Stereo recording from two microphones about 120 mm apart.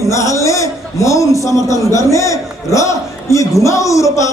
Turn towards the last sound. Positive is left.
turn(degrees=25)  # may be behind; listen again after turning